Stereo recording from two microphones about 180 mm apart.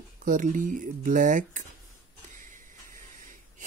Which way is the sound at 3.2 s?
45° right (ahead or behind).